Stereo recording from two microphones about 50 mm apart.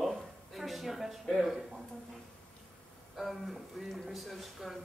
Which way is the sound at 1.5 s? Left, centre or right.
Centre.